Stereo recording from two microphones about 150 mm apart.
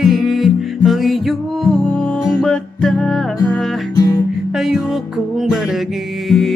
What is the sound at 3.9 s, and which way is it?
Music, 25° left (ahead or behind).